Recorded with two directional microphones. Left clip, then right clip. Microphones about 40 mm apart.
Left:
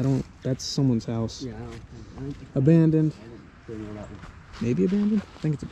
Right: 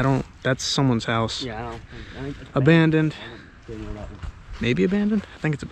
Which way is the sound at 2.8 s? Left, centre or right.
Centre.